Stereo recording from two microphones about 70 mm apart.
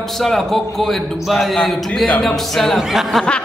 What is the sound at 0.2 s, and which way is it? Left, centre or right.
A man's voice, centre.